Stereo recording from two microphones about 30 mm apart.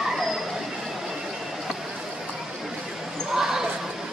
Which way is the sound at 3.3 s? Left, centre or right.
Centre.